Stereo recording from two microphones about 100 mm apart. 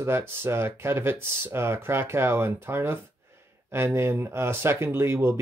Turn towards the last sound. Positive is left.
turn(degrees=-25)  # may be behind; listen again after turning